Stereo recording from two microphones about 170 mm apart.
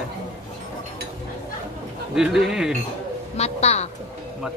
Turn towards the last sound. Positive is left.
turn(degrees=40)  # may be behind; listen again after turning